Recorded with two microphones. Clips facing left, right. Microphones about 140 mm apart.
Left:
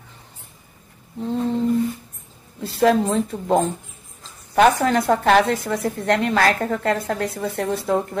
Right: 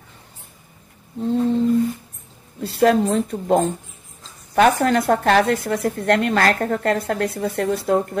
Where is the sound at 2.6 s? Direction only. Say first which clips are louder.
Right 1 dB; 55° right (ahead or behind).